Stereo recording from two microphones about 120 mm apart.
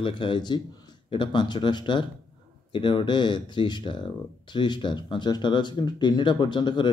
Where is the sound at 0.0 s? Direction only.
45° left (ahead or behind).